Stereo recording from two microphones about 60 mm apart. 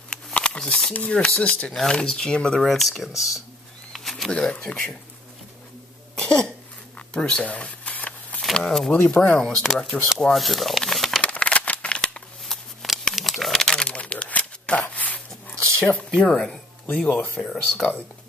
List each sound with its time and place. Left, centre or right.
0.1 s a sound: centre
0.9 s speech: left
2.6 s speech: centre
3.9 s bird: centre
4.3 s speech: centre
6.1 s cough: centre
7.0 s a sound: centre
8.5 s speech: centre
9.0 s speech: centre
10.3 s crumpling: centre
11.2 s a sound: centre
13.1 s crumpling: centre
17.1 s speech: left
17.4 s speech: centre